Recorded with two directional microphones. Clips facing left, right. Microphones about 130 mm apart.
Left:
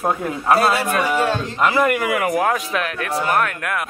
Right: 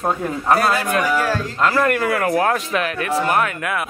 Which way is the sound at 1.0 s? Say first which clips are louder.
Even; 25° left (ahead or behind).